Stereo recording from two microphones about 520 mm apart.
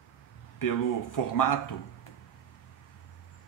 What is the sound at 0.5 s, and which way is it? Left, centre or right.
Speech, left.